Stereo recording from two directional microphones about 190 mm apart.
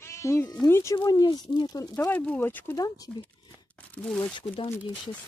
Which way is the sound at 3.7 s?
5° left (ahead or behind).